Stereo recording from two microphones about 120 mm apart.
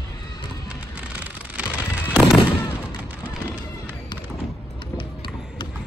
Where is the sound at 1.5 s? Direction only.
10° right (ahead or behind).